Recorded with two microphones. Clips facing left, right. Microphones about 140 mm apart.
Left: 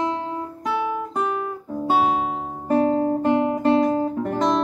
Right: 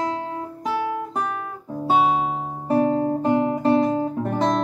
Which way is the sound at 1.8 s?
Centre (ahead or behind).